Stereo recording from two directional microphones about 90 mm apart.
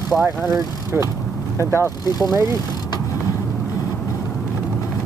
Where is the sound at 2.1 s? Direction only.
45° left (ahead or behind).